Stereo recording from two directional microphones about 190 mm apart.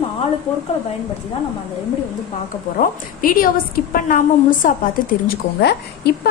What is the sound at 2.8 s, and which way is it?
A woman's voice, 45° left (ahead or behind).